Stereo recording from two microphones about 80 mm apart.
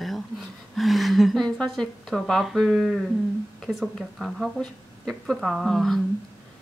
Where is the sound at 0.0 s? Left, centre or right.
Centre.